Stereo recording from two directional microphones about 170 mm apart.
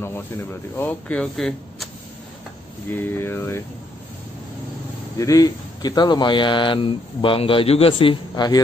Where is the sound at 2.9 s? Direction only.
10° left (ahead or behind).